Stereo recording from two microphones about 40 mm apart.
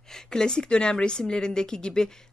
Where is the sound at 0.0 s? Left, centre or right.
Centre.